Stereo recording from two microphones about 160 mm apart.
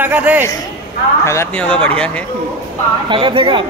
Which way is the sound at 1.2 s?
15° left (ahead or behind).